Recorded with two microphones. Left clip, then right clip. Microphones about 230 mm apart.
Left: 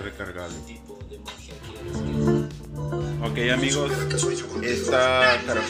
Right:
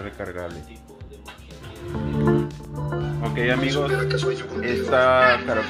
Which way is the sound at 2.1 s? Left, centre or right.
Centre.